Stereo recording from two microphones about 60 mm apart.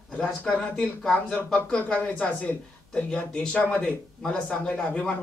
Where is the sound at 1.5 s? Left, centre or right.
Left.